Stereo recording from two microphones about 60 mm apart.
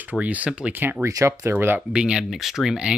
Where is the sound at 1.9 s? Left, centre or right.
Centre.